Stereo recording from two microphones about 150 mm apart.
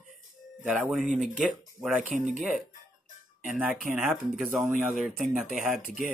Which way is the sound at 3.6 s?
5° right (ahead or behind).